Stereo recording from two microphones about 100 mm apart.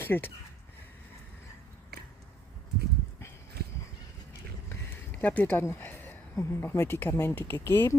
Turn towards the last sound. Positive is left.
turn(degrees=25)  # may be behind; listen again after turning